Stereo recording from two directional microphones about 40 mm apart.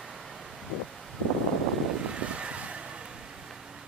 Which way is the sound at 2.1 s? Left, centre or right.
Right.